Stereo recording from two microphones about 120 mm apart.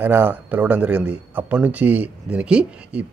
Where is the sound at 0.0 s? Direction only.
15° right (ahead or behind).